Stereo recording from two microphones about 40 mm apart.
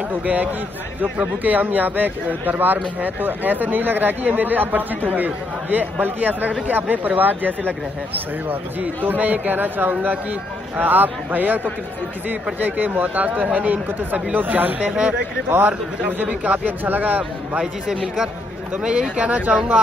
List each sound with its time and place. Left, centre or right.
0.1 s speech: right
14.9 s speech: right
16.1 s speech: right
18.9 s speech: right